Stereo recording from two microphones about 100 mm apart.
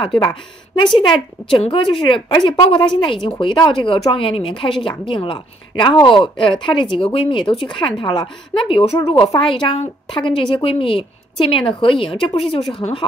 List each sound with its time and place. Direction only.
0.2 s a woman's voice: 55° left (ahead or behind); by 9.3 s 70° left (ahead or behind)
9.4 s a woman's voice: 60° left (ahead or behind)